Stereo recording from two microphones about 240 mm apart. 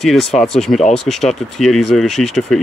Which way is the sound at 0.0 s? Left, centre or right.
Centre.